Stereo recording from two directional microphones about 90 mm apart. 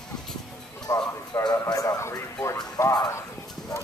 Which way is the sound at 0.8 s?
45° left (ahead or behind).